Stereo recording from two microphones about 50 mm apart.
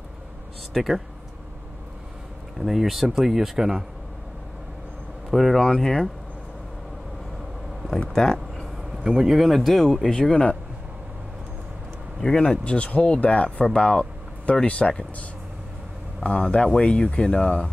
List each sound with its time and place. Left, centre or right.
0.7 s speech: centre
2.6 s speech: centre
5.3 s speech: centre
8.1 s a sound: centre
8.9 s a man's voice: centre
9.6 s speech: centre
10.3 s speech: left
12.2 s speech: centre
12.7 s speech: left